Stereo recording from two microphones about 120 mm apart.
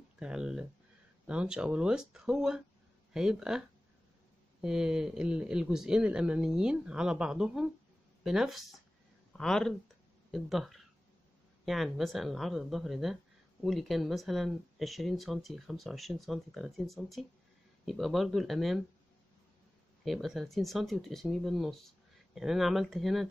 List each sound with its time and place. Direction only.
0.2 s speech: 5° right (ahead or behind)
20.1 s speech: centre (ahead or behind)